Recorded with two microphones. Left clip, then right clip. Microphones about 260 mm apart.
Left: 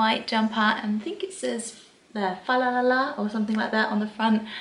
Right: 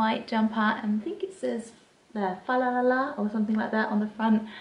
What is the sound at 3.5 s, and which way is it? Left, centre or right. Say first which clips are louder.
Speech: left 4 dB; centre.